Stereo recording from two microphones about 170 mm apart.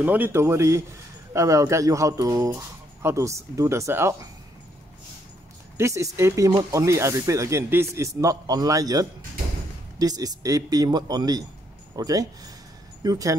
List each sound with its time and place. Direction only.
0.0 s speech: 10° right (ahead or behind)
5.8 s speech: 15° right (ahead or behind)